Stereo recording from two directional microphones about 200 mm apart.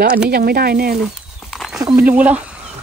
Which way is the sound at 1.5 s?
Centre (ahead or behind).